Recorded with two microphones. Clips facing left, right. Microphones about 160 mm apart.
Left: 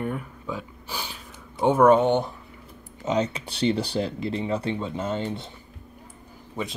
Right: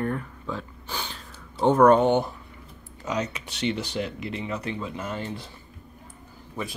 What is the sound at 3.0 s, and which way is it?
Speech, 25° left (ahead or behind).